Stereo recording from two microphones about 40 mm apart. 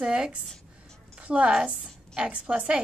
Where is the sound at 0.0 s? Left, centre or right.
Right.